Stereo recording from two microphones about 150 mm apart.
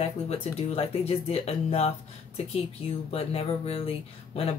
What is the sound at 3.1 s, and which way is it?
Speech, 40° left (ahead or behind).